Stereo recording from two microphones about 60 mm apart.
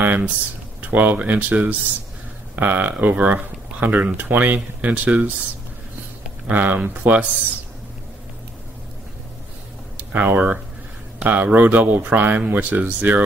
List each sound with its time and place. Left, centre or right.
0.0 s speech: right
6.4 s speech: right
10.1 s speech: right